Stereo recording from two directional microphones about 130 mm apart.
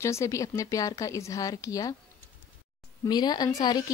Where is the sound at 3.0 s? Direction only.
35° left (ahead or behind).